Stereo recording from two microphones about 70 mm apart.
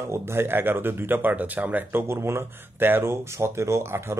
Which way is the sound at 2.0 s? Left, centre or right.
Right.